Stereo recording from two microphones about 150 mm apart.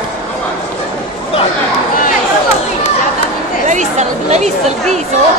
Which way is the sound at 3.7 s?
50° right (ahead or behind).